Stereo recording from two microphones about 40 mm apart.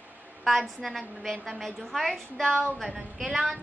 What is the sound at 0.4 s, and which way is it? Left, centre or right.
A woman's voice, centre.